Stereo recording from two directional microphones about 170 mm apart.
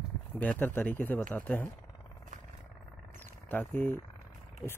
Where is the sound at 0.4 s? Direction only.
10° left (ahead or behind).